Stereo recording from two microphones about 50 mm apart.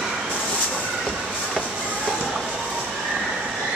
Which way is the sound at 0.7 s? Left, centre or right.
Centre.